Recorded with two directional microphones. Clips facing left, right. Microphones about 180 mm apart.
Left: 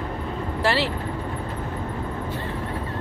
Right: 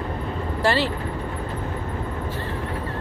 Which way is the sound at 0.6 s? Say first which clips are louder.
Right 1 dB; centre (ahead or behind).